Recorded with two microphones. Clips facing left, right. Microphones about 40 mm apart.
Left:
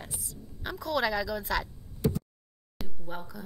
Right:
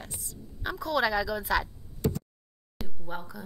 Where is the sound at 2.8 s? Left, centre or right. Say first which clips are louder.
Right 2 dB; centre.